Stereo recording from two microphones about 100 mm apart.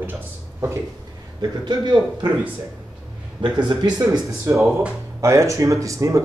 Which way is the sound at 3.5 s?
45° right (ahead or behind).